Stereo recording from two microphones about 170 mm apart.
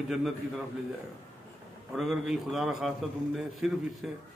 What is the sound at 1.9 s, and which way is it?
A man's voice, centre (ahead or behind).